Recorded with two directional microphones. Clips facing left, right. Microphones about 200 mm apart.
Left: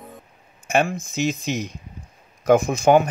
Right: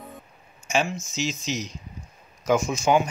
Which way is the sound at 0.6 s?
55° left (ahead or behind).